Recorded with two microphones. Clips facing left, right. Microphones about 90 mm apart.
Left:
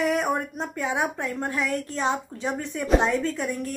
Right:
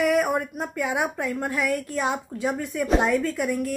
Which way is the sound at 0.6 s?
25° left (ahead or behind).